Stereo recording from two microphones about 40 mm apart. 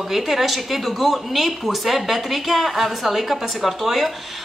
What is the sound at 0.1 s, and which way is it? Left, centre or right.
A woman's voice, centre.